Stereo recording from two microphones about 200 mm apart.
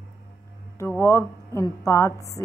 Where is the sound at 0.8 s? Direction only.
15° left (ahead or behind).